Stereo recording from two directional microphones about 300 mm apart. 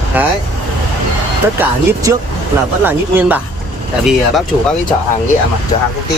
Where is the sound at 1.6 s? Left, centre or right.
Centre.